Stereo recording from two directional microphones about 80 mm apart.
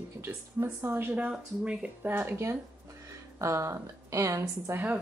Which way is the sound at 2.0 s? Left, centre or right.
Right.